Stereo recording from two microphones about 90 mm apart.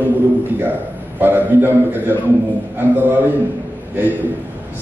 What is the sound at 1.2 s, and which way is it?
A man's voice, 25° right (ahead or behind).